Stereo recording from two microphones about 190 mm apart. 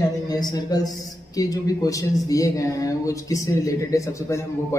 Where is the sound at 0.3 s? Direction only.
20° left (ahead or behind).